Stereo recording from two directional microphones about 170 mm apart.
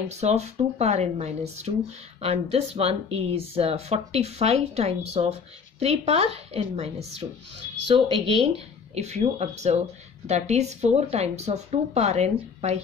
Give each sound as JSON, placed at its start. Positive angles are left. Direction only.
{"t": 0.1, "sound": "speech", "side_deg": -40}